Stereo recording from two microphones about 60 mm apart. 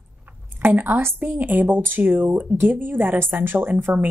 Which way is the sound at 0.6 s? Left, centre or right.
Right.